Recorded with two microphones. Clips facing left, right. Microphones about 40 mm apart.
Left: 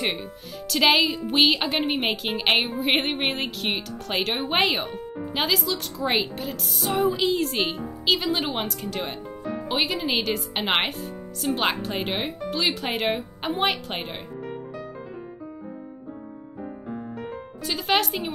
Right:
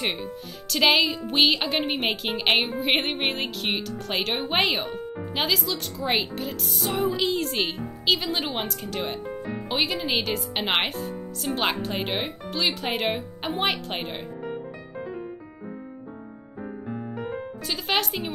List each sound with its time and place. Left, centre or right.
0.0 s speech: centre
9.3 s music: centre
9.7 s speech: centre
17.6 s speech: centre